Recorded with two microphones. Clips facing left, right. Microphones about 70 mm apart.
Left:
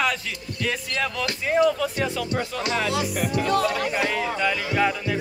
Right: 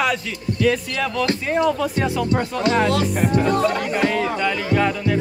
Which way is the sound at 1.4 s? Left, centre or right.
Centre.